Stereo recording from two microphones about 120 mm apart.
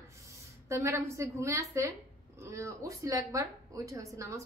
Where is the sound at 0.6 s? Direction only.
25° right (ahead or behind).